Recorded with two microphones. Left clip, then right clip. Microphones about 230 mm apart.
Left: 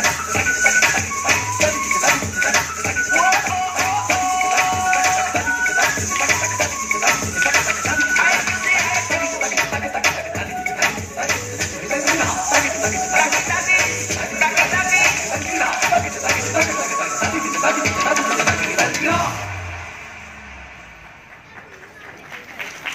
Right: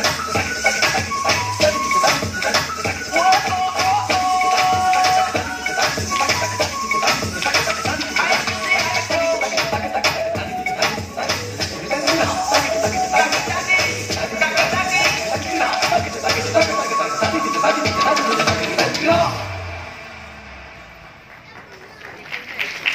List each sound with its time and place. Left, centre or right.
0.0 s music: left